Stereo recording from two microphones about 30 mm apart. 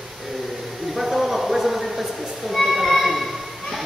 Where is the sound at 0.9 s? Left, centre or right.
Centre.